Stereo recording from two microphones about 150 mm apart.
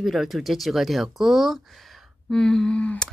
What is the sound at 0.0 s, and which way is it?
Speech, centre (ahead or behind).